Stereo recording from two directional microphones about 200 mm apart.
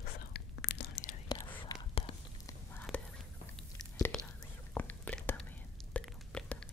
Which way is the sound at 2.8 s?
Centre (ahead or behind).